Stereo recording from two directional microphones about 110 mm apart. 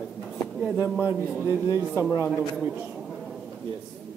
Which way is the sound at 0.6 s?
15° right (ahead or behind).